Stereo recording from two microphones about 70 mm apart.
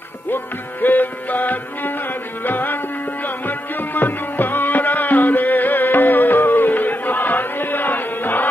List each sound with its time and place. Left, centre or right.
0.8 s music: left